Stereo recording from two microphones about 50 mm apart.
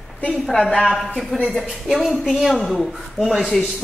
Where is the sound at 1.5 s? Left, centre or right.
Centre.